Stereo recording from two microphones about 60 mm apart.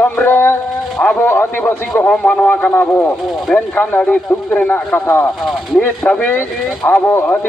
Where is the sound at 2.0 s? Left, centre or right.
Left.